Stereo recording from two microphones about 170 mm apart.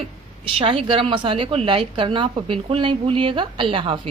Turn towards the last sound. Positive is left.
turn(degrees=-30)  # may be behind; listen again after turning